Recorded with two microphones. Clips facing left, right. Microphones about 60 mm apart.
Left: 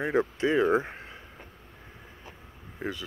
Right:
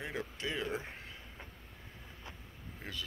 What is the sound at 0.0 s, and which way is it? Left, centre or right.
Speech, left.